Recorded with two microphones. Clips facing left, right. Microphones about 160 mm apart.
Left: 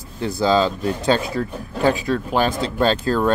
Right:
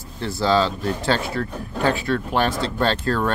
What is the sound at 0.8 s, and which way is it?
Speech, 20° left (ahead or behind).